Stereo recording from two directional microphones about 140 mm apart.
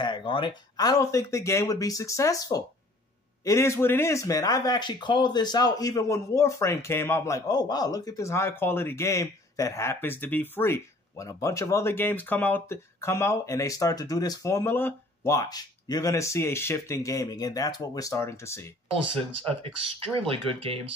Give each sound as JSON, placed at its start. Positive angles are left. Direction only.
{"t": 0.0, "sound": "speech", "side_deg": 35}
{"t": 19.0, "sound": "speech", "side_deg": -40}